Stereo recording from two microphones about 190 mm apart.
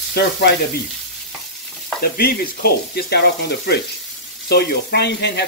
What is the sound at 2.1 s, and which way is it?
Speech, 55° left (ahead or behind).